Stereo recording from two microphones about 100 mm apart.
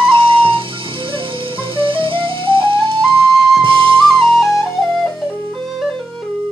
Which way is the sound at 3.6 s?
55° right (ahead or behind).